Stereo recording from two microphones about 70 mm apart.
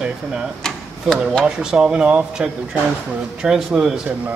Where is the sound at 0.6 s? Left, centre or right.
Centre.